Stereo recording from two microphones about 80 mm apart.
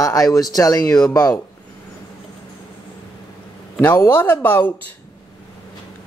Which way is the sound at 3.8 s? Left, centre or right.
Left.